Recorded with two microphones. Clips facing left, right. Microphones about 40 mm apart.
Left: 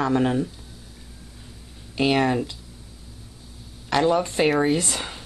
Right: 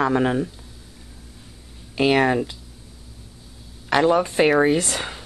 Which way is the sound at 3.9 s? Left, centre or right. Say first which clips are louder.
Right 3 dB; centre.